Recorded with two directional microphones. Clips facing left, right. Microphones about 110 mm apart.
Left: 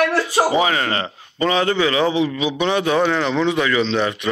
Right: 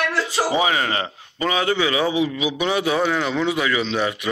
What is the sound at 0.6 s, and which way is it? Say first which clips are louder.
A man's voice: left 1 dB; 10° right (ahead or behind).